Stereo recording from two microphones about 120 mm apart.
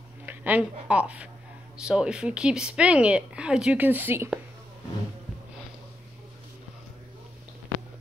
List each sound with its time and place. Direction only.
0.3 s a woman's voice: 15° right (ahead or behind)